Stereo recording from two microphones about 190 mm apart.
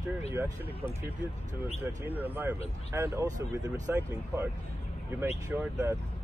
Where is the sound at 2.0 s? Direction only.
10° right (ahead or behind).